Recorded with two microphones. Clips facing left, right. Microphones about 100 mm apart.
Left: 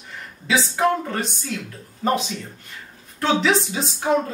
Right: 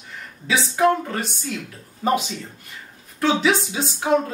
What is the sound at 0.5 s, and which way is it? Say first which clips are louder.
Speech: right 1 dB; centre (ahead or behind).